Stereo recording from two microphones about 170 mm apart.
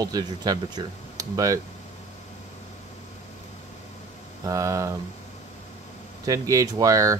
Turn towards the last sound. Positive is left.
turn(degrees=-20)  # may be behind; listen again after turning